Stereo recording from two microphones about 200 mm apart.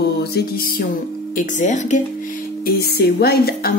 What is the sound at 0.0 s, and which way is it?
Music, 50° left (ahead or behind).